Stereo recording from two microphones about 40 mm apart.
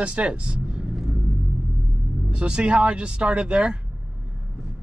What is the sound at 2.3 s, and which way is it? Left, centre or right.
Speech, right.